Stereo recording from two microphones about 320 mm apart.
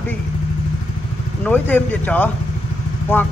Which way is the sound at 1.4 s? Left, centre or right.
Centre.